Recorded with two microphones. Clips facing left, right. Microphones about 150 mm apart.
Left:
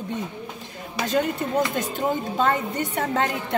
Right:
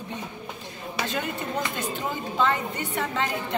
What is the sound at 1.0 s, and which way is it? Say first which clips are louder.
A woman's voice: left 8 dB; 40° left (ahead or behind).